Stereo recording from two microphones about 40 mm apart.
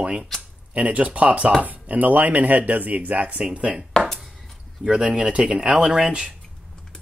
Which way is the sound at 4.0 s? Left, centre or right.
Left.